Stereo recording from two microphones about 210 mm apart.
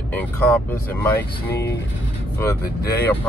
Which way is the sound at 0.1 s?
5° left (ahead or behind).